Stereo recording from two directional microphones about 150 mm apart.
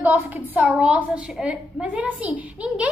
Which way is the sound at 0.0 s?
10° right (ahead or behind).